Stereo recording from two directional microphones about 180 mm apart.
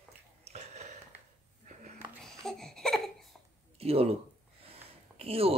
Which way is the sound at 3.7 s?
35° right (ahead or behind).